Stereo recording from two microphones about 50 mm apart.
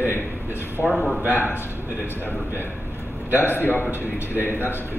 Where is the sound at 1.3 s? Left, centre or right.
Left.